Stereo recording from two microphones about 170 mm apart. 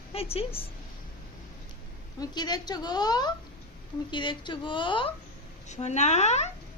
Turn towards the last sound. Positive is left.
turn(degrees=40)  # may be behind; listen again after turning